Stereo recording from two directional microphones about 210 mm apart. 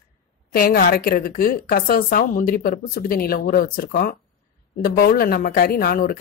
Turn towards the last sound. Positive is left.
turn(degrees=45)  # may be behind; listen again after turning